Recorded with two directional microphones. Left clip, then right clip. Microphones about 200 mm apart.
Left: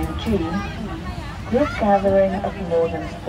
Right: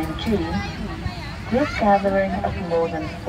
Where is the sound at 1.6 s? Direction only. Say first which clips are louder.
Even; 35° left (ahead or behind).